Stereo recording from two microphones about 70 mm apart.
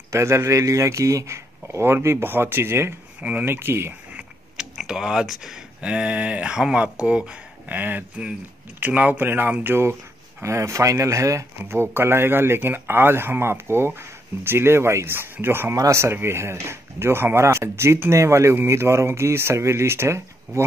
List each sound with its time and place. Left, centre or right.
0.1 s speech: right
3.2 s speech: centre
3.4 s speech: right
4.1 s a sound: centre
4.7 s speech: centre; by 15.7 s right
15.7 s speech: right